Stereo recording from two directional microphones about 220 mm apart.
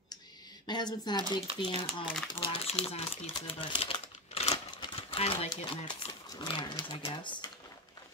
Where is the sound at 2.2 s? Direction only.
20° left (ahead or behind).